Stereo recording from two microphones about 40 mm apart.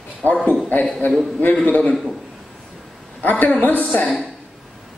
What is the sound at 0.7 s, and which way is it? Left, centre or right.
A woman's voice, left.